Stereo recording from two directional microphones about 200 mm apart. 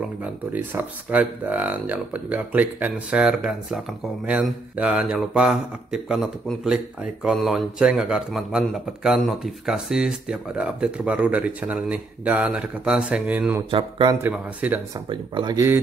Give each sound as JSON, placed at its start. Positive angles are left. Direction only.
{"t": 0.2, "sound": "speech", "side_deg": -10}
{"t": 13.7, "sound": "speech", "side_deg": -25}
{"t": 14.2, "sound": "speech", "side_deg": -10}
{"t": 15.0, "sound": "speech", "side_deg": -20}